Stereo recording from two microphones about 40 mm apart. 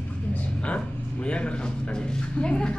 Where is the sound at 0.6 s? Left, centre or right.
Left.